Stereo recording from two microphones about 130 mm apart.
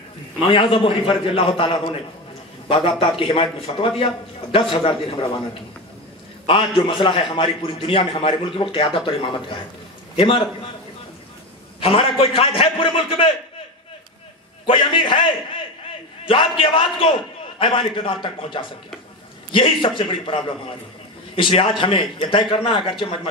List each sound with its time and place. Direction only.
0.5 s a man's voice: 40° left (ahead or behind)
6.4 s a man's voice: 45° left (ahead or behind)
11.8 s a man's voice: 45° left (ahead or behind)
14.7 s a man's voice: 40° left (ahead or behind)
16.3 s a man's voice: 40° left (ahead or behind)